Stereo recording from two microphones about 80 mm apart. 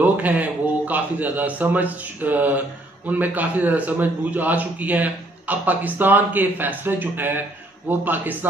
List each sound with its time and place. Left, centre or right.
0.0 s a man's voice: right